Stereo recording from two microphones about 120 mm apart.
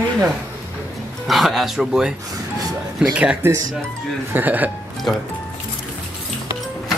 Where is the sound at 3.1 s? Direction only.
10° right (ahead or behind).